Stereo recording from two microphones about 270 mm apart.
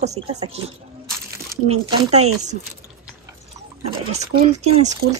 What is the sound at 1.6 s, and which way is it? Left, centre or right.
Speech, right.